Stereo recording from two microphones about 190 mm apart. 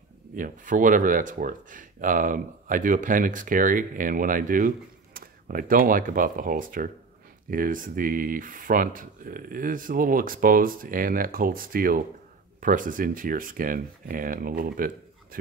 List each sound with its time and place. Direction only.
0.4 s speech: 45° right (ahead or behind)